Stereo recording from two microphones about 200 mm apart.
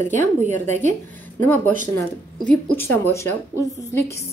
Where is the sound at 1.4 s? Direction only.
10° left (ahead or behind).